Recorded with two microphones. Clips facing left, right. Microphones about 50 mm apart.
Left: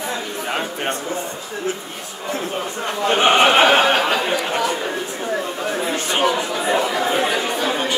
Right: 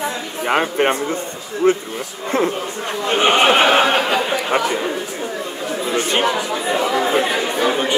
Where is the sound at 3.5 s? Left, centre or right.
Centre.